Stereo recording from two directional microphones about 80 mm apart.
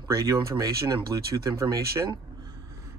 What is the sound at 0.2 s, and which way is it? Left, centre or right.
Speech, right.